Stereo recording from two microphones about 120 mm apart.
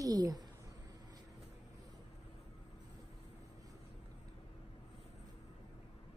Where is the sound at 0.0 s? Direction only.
30° right (ahead or behind).